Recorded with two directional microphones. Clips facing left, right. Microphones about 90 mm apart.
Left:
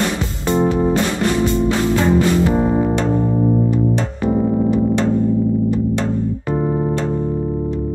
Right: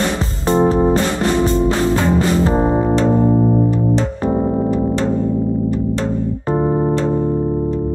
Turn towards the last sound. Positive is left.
turn(degrees=-25)  # may be behind; listen again after turning